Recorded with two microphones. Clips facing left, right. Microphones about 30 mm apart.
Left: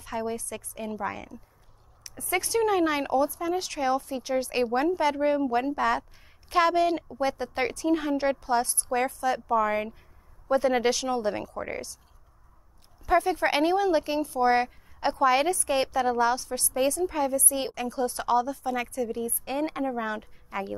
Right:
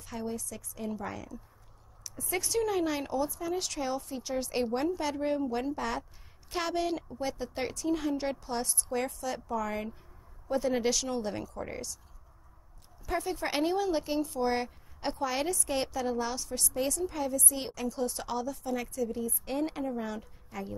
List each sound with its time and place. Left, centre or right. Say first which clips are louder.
0.0 s a woman's voice: left 6 dB; left
2.6 s a woman's voice: left 7 dB; left
3.2 s a woman's voice: left 6 dB; centre
13.0 s a woman's voice: left 9 dB; left